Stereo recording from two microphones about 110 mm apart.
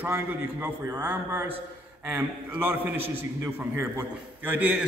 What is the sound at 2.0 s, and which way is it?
A man's voice, 15° right (ahead or behind).